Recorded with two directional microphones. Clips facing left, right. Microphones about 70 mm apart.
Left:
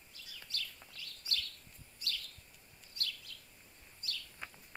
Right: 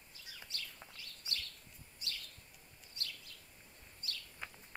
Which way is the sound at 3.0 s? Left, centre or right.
Right.